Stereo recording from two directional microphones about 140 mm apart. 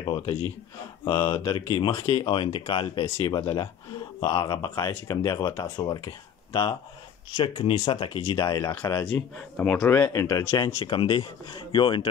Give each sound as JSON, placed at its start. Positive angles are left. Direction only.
{"t": 0.0, "sound": "speech", "side_deg": 40}
{"t": 9.1, "sound": "speech", "side_deg": 10}
{"t": 10.6, "sound": "speech", "side_deg": 35}